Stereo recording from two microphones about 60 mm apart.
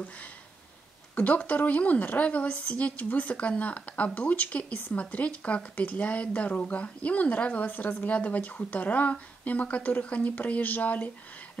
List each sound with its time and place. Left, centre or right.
1.1 s a woman's voice: left